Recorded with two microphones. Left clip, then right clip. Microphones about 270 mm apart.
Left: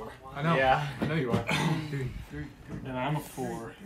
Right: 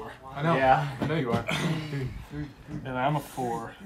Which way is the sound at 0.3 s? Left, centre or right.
Right.